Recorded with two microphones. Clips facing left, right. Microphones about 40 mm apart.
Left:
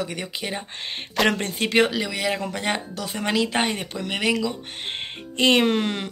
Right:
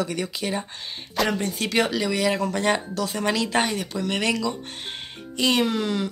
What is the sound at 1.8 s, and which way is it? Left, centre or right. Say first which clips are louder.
Speech: right 2 dB; centre.